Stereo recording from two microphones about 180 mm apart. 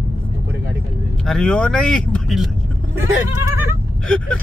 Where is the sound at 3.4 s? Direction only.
15° right (ahead or behind).